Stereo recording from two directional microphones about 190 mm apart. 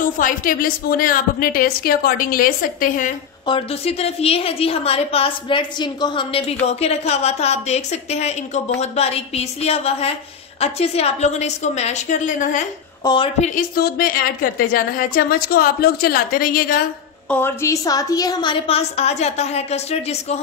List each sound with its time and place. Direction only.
0.0 s a woman's voice: 45° left (ahead or behind)
3.4 s a woman's voice: 30° left (ahead or behind)
13.0 s a woman's voice: 25° left (ahead or behind)
13.4 s a woman's voice: 50° left (ahead or behind)
17.3 s a woman's voice: 10° left (ahead or behind); by 20.3 s 35° left (ahead or behind)